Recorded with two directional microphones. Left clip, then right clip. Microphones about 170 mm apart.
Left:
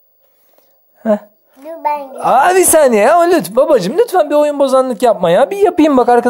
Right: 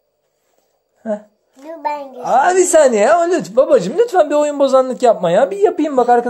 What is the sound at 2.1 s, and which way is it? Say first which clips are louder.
Speech: left 3 dB; 40° left (ahead or behind).